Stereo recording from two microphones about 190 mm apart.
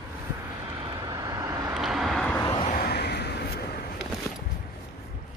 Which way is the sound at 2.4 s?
25° left (ahead or behind).